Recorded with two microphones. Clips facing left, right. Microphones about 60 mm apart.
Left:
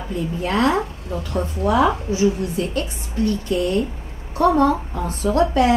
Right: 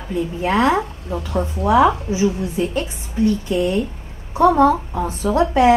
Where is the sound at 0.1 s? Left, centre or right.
Centre.